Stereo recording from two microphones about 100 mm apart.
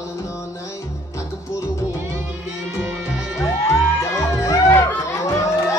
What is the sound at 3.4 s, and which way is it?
Music, 30° left (ahead or behind).